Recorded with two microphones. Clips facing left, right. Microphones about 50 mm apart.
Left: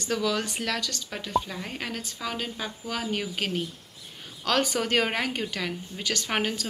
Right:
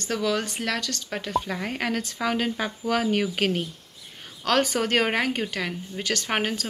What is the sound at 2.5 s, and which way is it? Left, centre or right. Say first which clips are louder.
Speech: right 6 dB; right.